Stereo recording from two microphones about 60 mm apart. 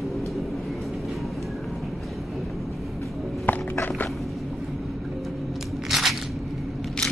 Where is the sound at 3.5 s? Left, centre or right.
Left.